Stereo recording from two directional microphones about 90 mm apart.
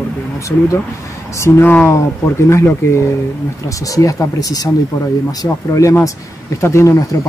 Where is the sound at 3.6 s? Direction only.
40° left (ahead or behind).